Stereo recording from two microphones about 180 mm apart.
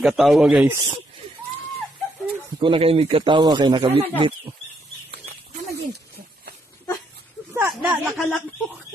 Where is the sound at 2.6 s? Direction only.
30° right (ahead or behind).